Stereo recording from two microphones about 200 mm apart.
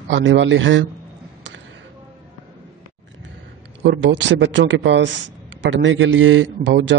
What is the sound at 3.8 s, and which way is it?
A man's voice, 65° right (ahead or behind).